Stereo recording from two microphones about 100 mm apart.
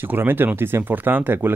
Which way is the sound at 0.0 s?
20° right (ahead or behind).